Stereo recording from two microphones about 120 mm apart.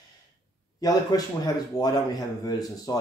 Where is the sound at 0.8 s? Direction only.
35° left (ahead or behind).